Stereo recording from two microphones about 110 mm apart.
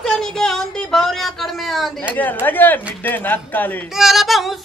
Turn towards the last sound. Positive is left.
turn(degrees=0)  # may be behind; listen again after turning